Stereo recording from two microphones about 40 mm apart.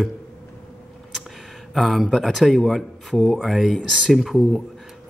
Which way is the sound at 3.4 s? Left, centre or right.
Centre.